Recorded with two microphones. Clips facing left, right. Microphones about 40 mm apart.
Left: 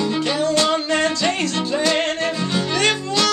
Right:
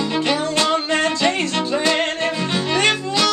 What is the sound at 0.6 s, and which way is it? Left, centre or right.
Music, centre.